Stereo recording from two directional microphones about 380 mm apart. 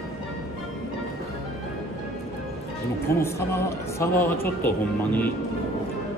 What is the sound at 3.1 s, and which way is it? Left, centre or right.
A man's voice, centre.